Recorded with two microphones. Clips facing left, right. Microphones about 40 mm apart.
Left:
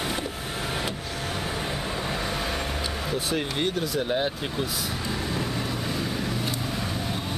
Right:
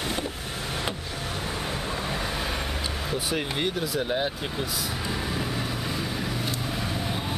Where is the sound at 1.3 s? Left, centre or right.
Centre.